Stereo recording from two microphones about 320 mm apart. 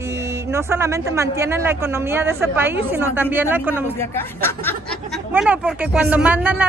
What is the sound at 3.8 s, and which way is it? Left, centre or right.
Speech, centre.